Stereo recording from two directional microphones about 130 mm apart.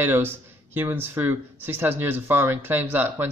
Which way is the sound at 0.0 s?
15° right (ahead or behind).